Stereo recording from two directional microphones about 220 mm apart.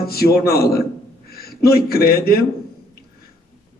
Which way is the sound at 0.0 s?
45° left (ahead or behind).